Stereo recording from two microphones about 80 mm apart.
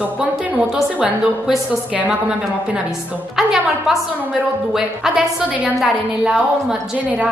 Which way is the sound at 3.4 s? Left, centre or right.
Centre.